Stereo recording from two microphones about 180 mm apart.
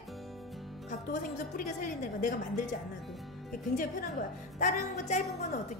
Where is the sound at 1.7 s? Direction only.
50° left (ahead or behind).